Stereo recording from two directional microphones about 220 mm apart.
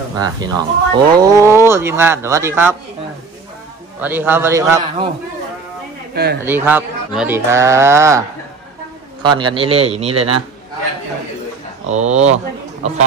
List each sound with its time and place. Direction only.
0.2 s speech: 20° right (ahead or behind)
4.0 s speech: 10° right (ahead or behind)
6.1 s a man's voice: 45° right (ahead or behind)
6.4 s speech: 10° right (ahead or behind)
9.2 s a man's voice: 20° right (ahead or behind)
11.8 s speech: 30° right (ahead or behind)